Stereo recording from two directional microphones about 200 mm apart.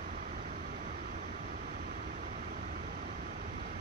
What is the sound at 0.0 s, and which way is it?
Vehicle, 40° right (ahead or behind).